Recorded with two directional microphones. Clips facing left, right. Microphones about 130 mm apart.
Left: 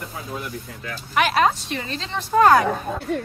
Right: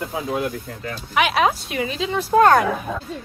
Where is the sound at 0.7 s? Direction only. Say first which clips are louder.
Right 3 dB; 35° right (ahead or behind).